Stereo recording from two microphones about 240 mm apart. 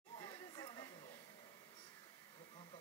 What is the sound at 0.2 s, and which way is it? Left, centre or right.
Chatter, centre.